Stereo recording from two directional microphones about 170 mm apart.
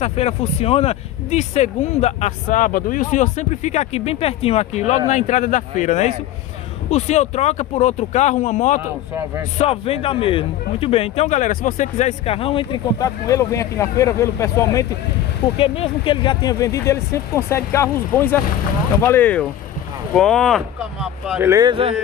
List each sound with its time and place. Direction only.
0.0 s speech: 40° left (ahead or behind)
9.6 s speech: 35° left (ahead or behind)
13.0 s speech: 20° left (ahead or behind)
15.5 s speech: 35° left (ahead or behind); by 21.5 s centre (ahead or behind)
21.5 s speech: 20° right (ahead or behind)